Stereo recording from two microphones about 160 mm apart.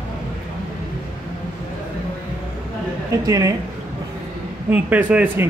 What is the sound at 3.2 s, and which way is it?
Speech, 20° right (ahead or behind).